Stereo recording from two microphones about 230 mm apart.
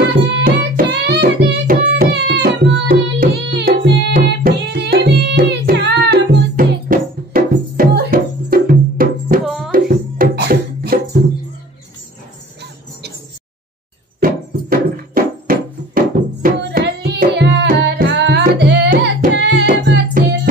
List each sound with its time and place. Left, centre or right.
0.3 s carnatic music: right
9.7 s music: right
14.2 s music: right